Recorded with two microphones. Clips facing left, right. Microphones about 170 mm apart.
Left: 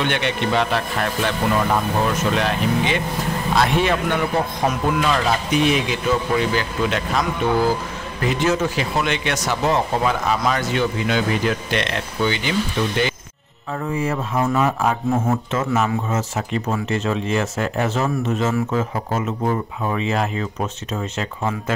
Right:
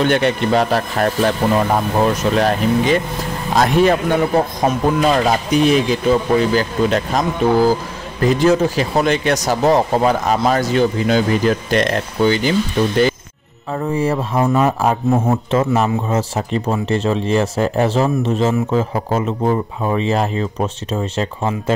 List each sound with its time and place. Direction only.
0.0 s a man's voice: 40° right (ahead or behind)